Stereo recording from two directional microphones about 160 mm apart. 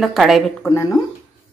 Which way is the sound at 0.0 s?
Centre (ahead or behind).